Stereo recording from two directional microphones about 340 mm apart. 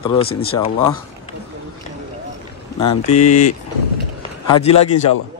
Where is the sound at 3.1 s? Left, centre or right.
Left.